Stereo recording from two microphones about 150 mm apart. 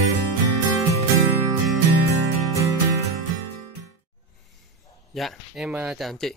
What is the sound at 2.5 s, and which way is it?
Music, 20° right (ahead or behind).